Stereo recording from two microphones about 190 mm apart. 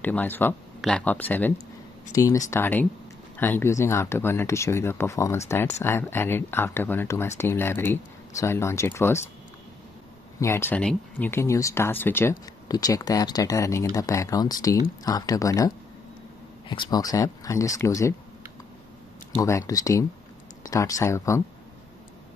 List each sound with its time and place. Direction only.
0.0 s speech: 10° left (ahead or behind)
10.4 s speech: 15° left (ahead or behind)
19.3 s speech: 15° left (ahead or behind)